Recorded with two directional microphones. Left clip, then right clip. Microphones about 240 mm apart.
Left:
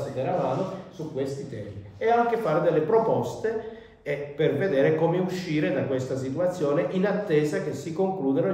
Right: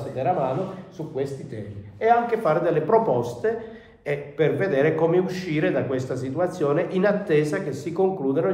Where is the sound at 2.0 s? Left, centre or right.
Centre.